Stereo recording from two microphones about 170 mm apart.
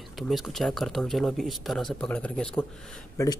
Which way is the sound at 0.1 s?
Centre (ahead or behind).